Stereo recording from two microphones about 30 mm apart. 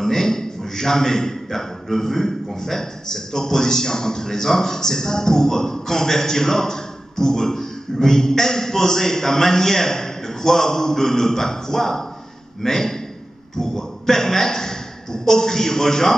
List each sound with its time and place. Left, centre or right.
0.0 s a man's voice: centre